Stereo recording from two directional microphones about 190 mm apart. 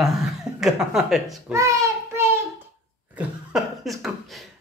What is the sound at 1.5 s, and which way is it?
Child singing, 15° right (ahead or behind).